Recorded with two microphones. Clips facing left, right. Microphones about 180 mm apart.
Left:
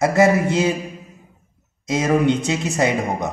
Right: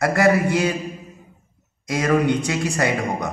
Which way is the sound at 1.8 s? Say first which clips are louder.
Left 2 dB; 20° left (ahead or behind).